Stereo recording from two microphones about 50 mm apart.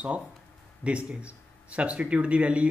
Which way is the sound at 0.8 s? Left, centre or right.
Right.